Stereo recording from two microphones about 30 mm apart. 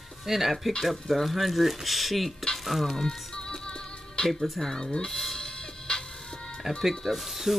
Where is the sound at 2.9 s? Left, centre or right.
Left.